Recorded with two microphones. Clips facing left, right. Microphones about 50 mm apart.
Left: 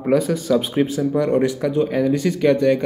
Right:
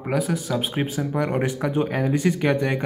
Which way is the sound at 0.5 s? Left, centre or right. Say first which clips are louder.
Left 10 dB; centre.